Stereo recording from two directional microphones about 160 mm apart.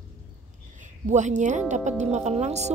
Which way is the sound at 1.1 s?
50° right (ahead or behind).